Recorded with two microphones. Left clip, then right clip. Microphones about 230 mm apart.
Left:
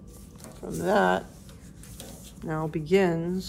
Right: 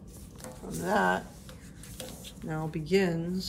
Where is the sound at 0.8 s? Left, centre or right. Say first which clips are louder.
Left 4 dB; left.